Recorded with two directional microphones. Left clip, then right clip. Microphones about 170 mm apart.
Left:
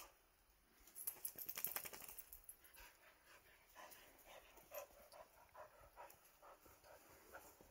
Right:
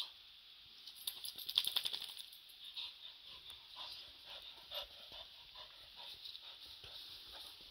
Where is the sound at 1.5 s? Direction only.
45° left (ahead or behind).